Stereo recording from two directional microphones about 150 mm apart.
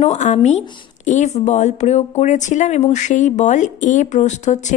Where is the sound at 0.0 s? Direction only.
50° left (ahead or behind).